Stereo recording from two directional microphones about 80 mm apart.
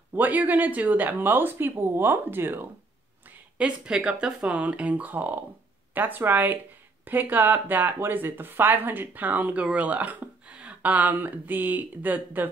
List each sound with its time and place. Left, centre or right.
0.1 s speech: right
3.3 s speech: centre